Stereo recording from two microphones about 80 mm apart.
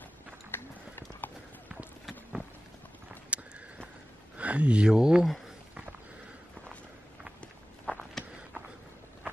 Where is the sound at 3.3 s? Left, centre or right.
Centre.